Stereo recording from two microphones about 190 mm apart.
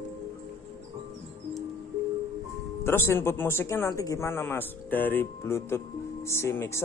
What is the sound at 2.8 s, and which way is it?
A man's voice, 10° left (ahead or behind).